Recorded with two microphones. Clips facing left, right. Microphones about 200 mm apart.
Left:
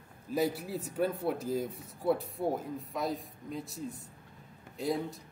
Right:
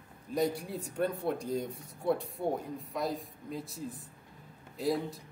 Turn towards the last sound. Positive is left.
turn(degrees=0)  # may be behind; listen again after turning